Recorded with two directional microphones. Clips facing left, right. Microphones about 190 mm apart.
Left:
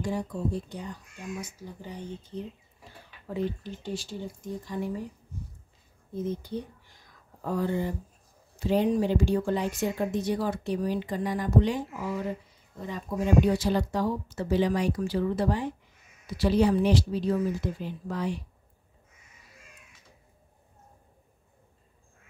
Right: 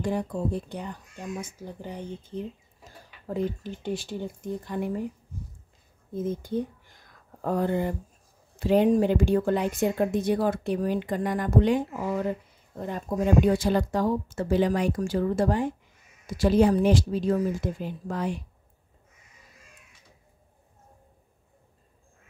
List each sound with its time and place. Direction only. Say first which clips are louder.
0.0 s speech: right 3 dB; 60° right (ahead or behind)
2.8 s speech: left 2 dB; 45° right (ahead or behind)
6.1 s a sound: right 4 dB; 50° right (ahead or behind)
8.5 s speech: right 4 dB; 55° right (ahead or behind)